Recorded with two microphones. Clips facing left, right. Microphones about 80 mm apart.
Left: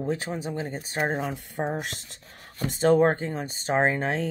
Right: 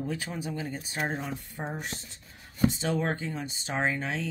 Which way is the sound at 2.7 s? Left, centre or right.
Left.